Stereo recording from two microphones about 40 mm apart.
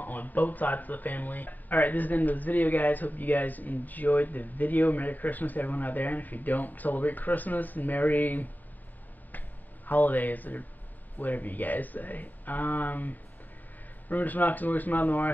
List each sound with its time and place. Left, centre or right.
0.0 s speech: left
9.8 s speech: left